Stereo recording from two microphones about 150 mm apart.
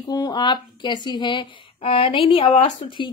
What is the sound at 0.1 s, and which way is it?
Speech, 30° left (ahead or behind).